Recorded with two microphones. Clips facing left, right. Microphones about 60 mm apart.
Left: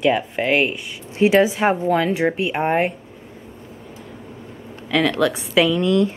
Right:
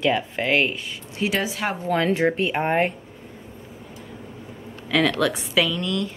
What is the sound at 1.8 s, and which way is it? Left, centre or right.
A woman's voice, centre.